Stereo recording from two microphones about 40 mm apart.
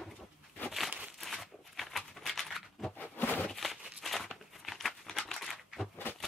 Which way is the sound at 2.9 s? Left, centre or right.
Left.